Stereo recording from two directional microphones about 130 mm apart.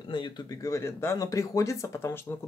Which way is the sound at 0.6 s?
20° left (ahead or behind).